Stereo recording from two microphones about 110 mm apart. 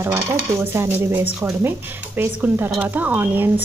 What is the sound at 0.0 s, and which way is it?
Speech, 25° right (ahead or behind).